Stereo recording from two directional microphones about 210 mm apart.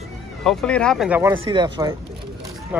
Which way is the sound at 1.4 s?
25° right (ahead or behind).